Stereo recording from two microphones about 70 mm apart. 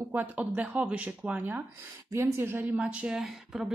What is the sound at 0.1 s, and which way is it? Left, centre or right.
Speech, right.